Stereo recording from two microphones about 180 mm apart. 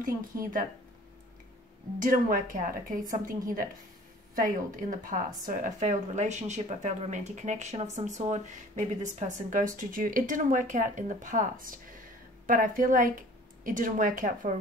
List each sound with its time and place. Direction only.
0.0 s speech: 50° right (ahead or behind)
2.0 s speech: 50° right (ahead or behind)
4.4 s speech: 45° right (ahead or behind)